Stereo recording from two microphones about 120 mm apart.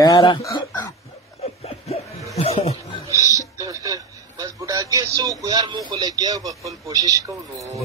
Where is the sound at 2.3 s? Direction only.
60° left (ahead or behind).